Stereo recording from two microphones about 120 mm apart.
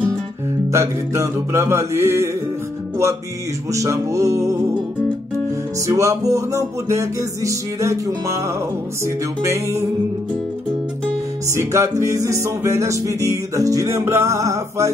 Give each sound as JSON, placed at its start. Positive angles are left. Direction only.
{"t": 0.7, "sound": "music", "side_deg": -25}
{"t": 3.7, "sound": "music", "side_deg": -25}
{"t": 5.9, "sound": "music", "side_deg": -25}
{"t": 9.4, "sound": "music", "side_deg": -25}
{"t": 11.5, "sound": "music", "side_deg": -25}